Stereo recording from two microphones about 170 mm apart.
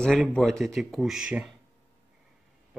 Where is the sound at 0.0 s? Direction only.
5° left (ahead or behind).